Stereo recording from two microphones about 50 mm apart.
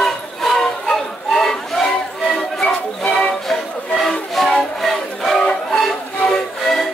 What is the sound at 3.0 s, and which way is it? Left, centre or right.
Music, left.